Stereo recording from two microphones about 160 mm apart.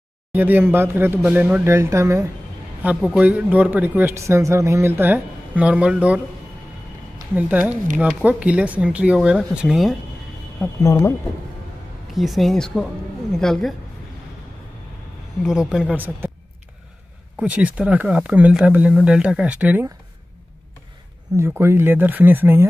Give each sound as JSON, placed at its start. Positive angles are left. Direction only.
{"t": 0.3, "sound": "a man's voice", "side_deg": -10}
{"t": 2.8, "sound": "a man's voice", "side_deg": -5}
{"t": 7.3, "sound": "a man's voice", "side_deg": -10}
{"t": 10.8, "sound": "speech", "side_deg": 15}
{"t": 12.1, "sound": "speech", "side_deg": 0}
{"t": 15.4, "sound": "speech", "side_deg": -5}
{"t": 17.4, "sound": "a man's voice", "side_deg": -10}
{"t": 21.4, "sound": "a man's voice", "side_deg": -15}